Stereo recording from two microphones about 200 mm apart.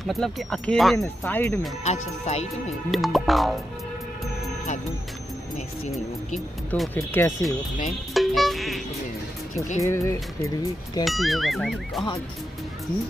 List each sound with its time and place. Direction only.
0.0 s speech: centre (ahead or behind)
1.9 s speech: 35° left (ahead or behind)
2.9 s speech: centre (ahead or behind)
6.7 s speech: 10° left (ahead or behind)
8.1 s speech: centre (ahead or behind)
9.8 s speech: 15° left (ahead or behind)
11.1 s speech: centre (ahead or behind)